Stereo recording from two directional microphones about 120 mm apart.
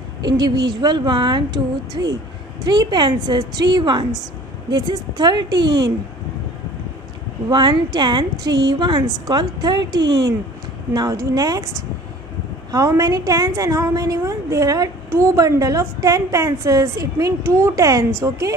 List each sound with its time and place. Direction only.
0.3 s a woman's voice: 35° right (ahead or behind)
7.4 s a woman's voice: 35° right (ahead or behind)
10.9 s a woman's voice: 30° right (ahead or behind)
12.7 s a woman's voice: 30° right (ahead or behind)